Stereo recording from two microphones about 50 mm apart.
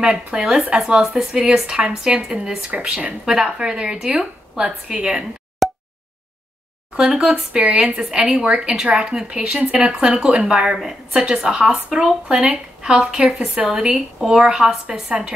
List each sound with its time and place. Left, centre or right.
0.0 s speech: centre
0.6 s speech: right
1.0 s speech: centre
5.6 s a sound: centre
7.0 s speech: centre